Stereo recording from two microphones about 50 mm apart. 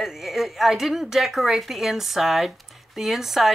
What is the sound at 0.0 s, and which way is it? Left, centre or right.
A woman's voice, centre.